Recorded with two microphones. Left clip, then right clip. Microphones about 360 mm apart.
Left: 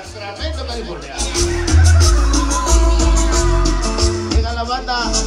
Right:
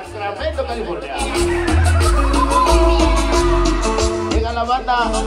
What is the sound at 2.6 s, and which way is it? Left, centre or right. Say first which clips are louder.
Music: right 5 dB; right.